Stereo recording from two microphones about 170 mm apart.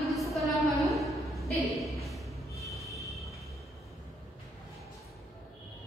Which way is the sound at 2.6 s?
Centre (ahead or behind).